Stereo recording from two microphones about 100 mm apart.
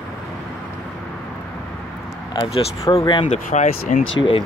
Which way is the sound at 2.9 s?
40° left (ahead or behind).